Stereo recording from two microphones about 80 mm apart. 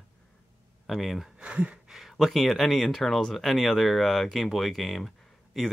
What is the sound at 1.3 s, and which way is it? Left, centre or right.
Speech, centre.